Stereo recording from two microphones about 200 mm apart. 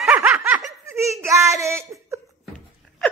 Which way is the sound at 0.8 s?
15° right (ahead or behind).